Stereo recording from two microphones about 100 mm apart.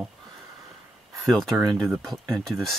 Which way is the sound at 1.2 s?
Centre (ahead or behind).